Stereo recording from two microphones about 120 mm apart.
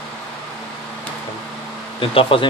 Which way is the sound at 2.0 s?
45° left (ahead or behind).